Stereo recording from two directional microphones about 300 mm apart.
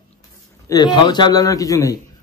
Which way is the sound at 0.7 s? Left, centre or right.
Centre.